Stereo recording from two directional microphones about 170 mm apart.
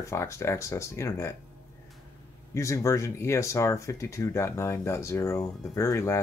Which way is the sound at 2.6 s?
20° left (ahead or behind).